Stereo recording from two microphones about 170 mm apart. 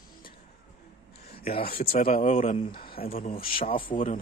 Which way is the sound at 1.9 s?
55° left (ahead or behind).